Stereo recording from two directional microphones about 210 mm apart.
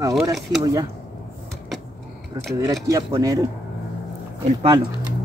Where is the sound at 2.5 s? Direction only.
15° right (ahead or behind).